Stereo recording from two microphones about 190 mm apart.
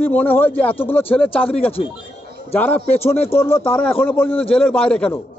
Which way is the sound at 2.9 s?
35° left (ahead or behind).